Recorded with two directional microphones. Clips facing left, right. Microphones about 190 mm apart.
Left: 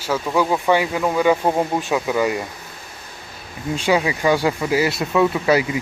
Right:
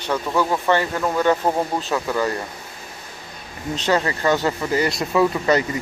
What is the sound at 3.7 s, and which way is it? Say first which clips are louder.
Speech: left 2 dB; 10° left (ahead or behind).